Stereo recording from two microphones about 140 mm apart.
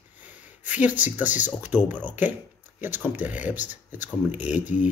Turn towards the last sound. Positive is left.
turn(degrees=-10)  # may be behind; listen again after turning